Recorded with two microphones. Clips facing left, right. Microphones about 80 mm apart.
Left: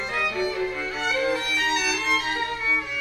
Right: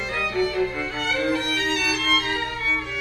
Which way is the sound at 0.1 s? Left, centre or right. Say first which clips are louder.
Right 3 dB; centre.